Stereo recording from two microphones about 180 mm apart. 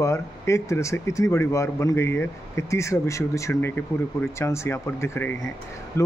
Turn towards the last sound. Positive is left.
turn(degrees=15)  # may be behind; listen again after turning